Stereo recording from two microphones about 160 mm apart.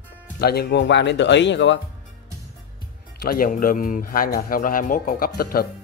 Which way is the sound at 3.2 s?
65° left (ahead or behind).